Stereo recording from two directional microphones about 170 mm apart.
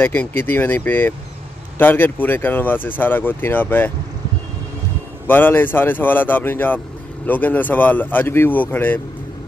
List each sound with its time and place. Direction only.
0.0 s speech: 10° left (ahead or behind)
5.2 s speech: 10° left (ahead or behind)